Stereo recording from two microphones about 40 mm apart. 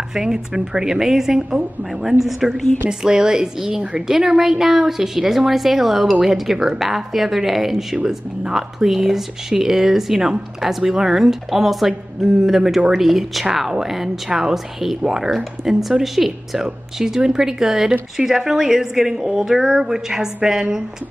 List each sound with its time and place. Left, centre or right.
0.1 s a woman's voice: centre
2.9 s speech: centre